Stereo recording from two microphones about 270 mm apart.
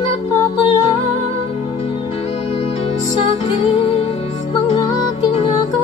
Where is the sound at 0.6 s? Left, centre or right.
Left.